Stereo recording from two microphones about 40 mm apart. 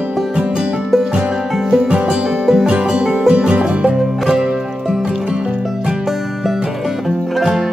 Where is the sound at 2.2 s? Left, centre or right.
Centre.